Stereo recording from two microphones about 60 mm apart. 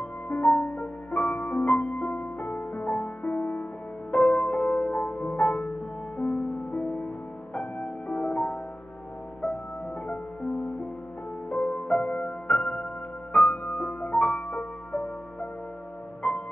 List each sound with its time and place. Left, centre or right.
0.3 s music: left
10.0 s music: centre
16.2 s music: centre